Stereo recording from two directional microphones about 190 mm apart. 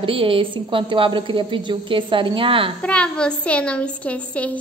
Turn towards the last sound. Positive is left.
turn(degrees=5)  # may be behind; listen again after turning